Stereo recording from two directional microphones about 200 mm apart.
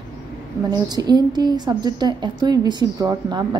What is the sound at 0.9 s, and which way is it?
A woman's voice, 20° right (ahead or behind).